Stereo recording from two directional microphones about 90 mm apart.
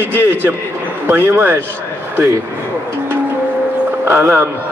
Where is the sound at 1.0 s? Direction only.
20° right (ahead or behind).